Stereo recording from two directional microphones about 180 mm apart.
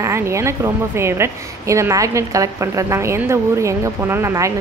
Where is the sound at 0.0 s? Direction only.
15° right (ahead or behind).